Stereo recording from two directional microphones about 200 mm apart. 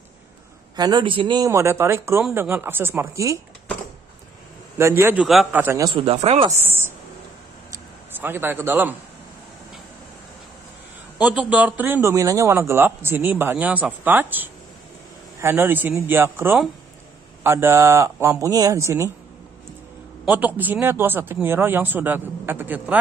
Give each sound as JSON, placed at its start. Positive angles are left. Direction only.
{"t": 0.7, "sound": "a man's voice", "side_deg": -20}
{"t": 4.7, "sound": "a man's voice", "side_deg": -10}
{"t": 5.9, "sound": "speech", "side_deg": -30}
{"t": 6.6, "sound": "a sound", "side_deg": -10}
{"t": 11.1, "sound": "a man's voice", "side_deg": -5}
{"t": 20.2, "sound": "a man's voice", "side_deg": -10}